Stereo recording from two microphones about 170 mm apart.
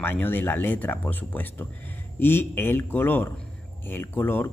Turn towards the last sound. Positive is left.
turn(degrees=10)  # may be behind; listen again after turning